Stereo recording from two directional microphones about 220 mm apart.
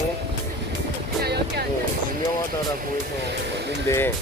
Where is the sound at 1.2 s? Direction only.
45° right (ahead or behind).